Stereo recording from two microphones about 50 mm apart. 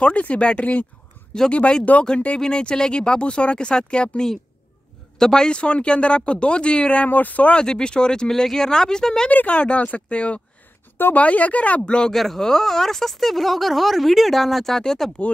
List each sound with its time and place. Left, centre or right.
0.0 s speech: left
7.1 s speech: left
7.5 s speech: centre
9.3 s speech: left
12.1 s speech: centre